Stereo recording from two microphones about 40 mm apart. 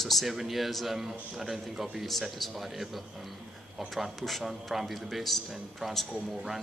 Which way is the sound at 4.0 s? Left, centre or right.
Centre.